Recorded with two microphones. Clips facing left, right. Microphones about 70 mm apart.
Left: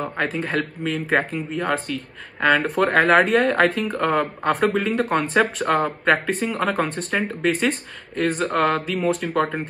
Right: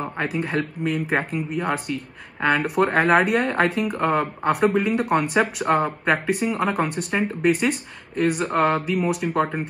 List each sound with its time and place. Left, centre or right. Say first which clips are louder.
0.0 s speech: left 1 dB; centre